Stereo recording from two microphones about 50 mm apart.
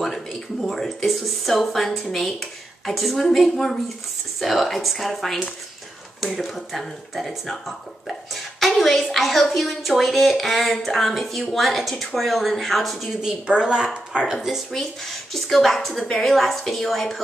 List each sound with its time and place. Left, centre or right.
0.0 s speech: centre
3.2 s a woman's voice: centre
13.5 s speech: centre
14.7 s speech: centre